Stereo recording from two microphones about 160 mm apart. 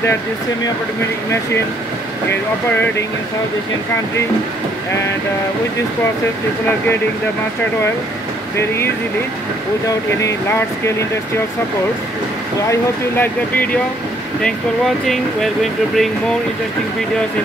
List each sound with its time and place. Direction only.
8.5 s speech: 15° left (ahead or behind)
13.2 s speech: 10° left (ahead or behind)
15.0 s speech: centre (ahead or behind)